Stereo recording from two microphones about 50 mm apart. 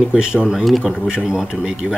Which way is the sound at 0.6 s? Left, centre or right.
Centre.